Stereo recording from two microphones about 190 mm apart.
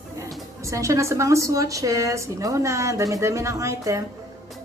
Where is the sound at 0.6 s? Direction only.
15° right (ahead or behind).